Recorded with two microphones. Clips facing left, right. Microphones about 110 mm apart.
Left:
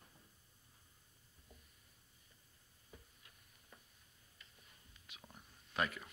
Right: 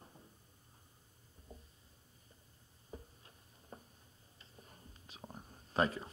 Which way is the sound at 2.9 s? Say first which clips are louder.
Right 10 dB; 35° right (ahead or behind).